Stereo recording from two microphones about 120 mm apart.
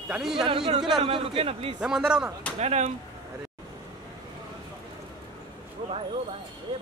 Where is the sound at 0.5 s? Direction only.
45° right (ahead or behind).